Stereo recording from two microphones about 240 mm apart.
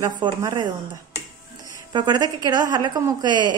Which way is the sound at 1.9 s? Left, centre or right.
Centre.